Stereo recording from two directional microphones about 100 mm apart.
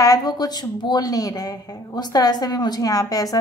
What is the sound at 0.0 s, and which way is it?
Speech, 40° left (ahead or behind).